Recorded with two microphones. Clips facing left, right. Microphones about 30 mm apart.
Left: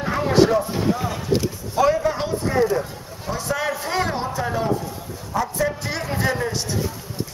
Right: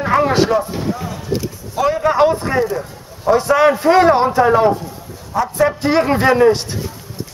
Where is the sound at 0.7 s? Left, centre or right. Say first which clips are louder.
Even; centre.